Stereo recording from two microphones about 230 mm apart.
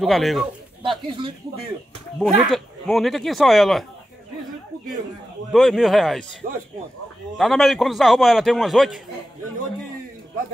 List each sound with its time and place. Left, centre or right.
0.0 s speech: centre
0.8 s speech: right
2.1 s speech: centre
5.5 s speech: centre
6.4 s speech: right
7.3 s speech: centre